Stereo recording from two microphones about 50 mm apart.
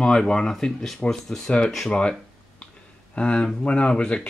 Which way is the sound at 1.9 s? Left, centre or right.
Centre.